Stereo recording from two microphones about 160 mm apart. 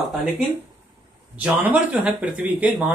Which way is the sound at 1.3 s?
10° right (ahead or behind).